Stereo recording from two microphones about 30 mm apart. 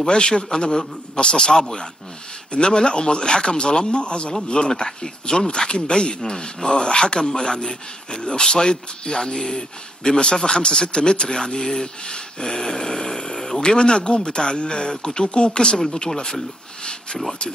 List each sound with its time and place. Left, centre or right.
0.0 s speech: left